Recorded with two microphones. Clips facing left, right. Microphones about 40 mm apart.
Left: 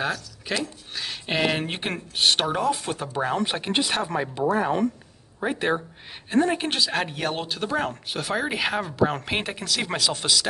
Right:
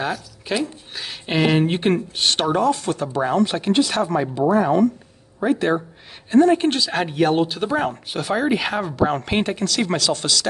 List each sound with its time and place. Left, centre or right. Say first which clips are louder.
0.0 s speech: right 2 dB; centre